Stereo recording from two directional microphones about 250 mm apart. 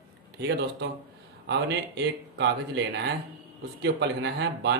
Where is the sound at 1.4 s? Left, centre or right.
Right.